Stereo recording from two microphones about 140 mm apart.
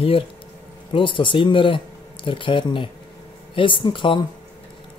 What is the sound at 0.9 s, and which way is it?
Speech, 35° left (ahead or behind).